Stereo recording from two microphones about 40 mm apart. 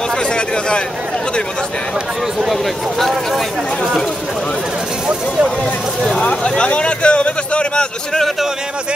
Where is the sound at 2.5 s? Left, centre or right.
Centre.